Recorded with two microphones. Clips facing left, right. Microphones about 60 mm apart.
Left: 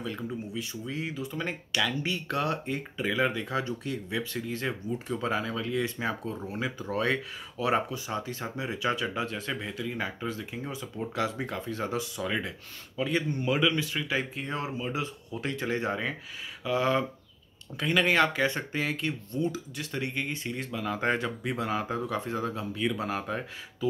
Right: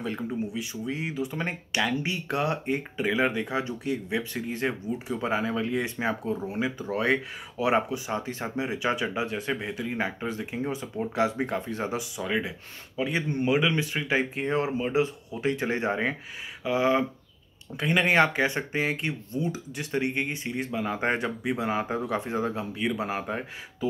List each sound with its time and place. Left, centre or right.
0.3 s speech: centre
4.9 s speech: centre
6.6 s speech: centre
12.2 s speech: centre